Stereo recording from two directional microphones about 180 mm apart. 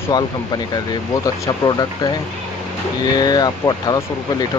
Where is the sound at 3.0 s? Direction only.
20° left (ahead or behind).